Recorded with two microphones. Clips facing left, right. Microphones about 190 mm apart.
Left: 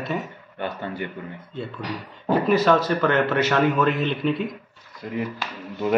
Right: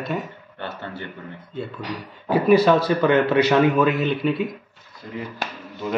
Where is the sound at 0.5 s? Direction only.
15° left (ahead or behind).